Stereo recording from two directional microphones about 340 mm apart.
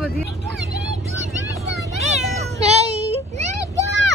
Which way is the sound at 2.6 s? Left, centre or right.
Centre.